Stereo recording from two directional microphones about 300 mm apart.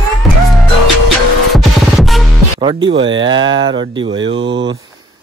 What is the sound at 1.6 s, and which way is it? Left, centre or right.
Music, centre.